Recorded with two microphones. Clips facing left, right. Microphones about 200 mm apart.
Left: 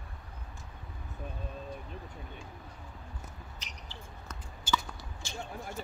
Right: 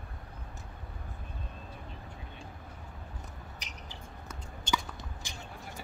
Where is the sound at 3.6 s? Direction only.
15° right (ahead or behind).